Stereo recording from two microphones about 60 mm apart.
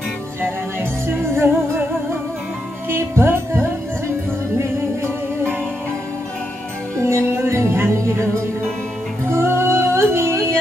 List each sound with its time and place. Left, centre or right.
1.2 s music: right
2.9 s music: right
7.0 s music: right